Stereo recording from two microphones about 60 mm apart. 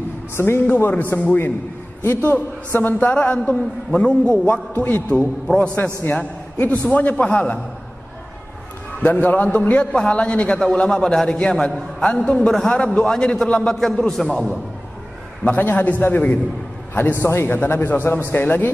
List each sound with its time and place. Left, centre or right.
0.7 s a man's voice: left
6.6 s a man's voice: left
9.0 s a man's voice: left; by 14.5 s centre
15.4 s a man's voice: left